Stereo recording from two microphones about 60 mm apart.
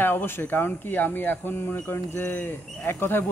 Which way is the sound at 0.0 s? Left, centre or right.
Left.